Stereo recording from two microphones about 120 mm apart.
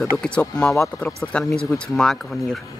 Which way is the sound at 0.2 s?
10° left (ahead or behind).